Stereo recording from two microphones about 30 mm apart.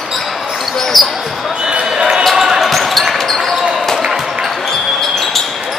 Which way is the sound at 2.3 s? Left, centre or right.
Centre.